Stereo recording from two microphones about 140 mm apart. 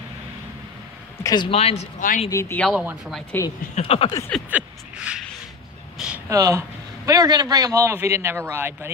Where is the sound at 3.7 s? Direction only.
45° left (ahead or behind).